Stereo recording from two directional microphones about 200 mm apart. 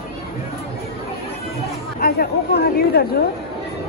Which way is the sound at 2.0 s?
50° left (ahead or behind).